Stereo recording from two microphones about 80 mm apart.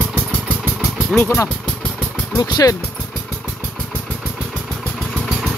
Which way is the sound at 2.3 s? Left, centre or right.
Left.